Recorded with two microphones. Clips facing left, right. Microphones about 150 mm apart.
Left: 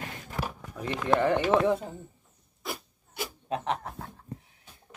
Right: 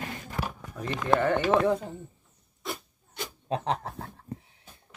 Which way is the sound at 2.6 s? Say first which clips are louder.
Right 1 dB; 5° left (ahead or behind).